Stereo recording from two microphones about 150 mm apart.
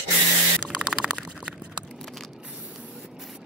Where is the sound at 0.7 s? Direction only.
5° right (ahead or behind).